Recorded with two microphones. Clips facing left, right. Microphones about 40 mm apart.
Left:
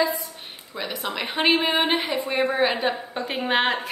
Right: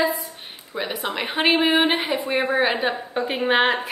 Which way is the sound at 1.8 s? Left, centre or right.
Right.